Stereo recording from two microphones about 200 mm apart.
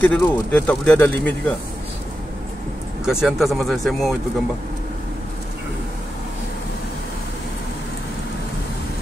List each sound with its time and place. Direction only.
0.0 s speech: 5° left (ahead or behind)
3.1 s speech: centre (ahead or behind)